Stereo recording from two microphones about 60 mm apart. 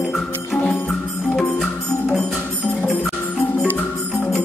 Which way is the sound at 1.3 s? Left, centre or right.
Centre.